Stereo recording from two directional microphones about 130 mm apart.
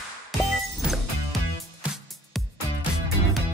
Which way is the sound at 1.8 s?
5° right (ahead or behind).